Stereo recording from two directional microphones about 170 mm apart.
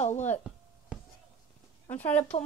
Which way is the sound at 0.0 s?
40° left (ahead or behind).